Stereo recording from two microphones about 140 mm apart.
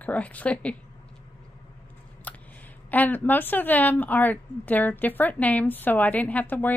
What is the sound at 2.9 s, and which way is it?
A woman's voice, 10° left (ahead or behind).